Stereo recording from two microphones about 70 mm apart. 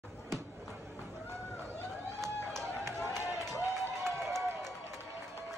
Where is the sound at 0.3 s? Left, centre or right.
Right.